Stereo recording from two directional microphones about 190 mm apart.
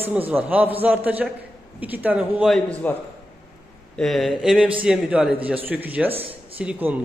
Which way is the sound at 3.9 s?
Centre (ahead or behind).